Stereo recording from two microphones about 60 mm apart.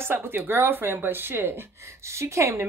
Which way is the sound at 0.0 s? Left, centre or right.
Right.